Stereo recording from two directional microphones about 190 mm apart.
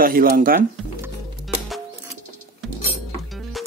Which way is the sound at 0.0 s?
50° right (ahead or behind).